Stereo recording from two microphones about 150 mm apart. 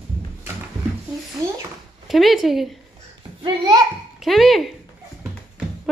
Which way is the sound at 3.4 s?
30° right (ahead or behind).